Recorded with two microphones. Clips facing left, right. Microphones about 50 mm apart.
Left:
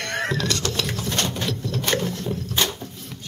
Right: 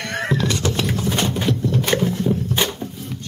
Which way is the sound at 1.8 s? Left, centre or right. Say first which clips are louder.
Right 3 dB; centre.